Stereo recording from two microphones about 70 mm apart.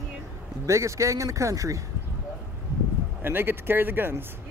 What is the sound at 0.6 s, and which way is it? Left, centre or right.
Speech, right.